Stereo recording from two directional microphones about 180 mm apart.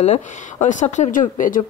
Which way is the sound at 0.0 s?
40° left (ahead or behind).